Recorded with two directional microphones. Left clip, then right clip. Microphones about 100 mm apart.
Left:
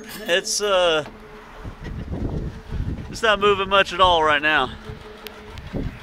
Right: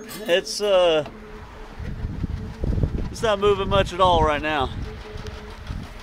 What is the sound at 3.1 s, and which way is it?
Speech, 15° right (ahead or behind).